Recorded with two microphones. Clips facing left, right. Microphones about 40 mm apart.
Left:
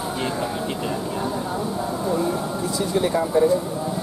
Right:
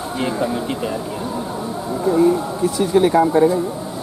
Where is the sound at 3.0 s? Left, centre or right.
Right.